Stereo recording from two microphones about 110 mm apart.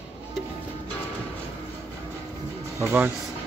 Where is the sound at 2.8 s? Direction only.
20° right (ahead or behind).